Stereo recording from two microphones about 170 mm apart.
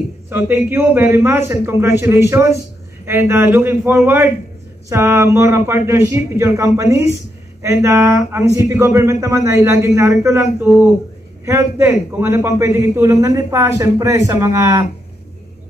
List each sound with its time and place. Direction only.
0.3 s a man's voice: 15° right (ahead or behind)